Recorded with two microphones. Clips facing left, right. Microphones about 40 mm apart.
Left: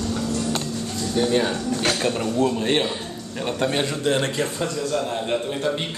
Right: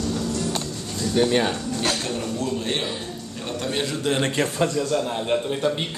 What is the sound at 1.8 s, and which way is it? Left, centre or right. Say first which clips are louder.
A man's voice: left 3 dB; left.